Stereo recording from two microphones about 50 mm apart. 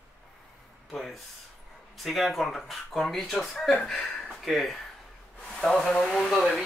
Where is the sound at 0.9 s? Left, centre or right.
Centre.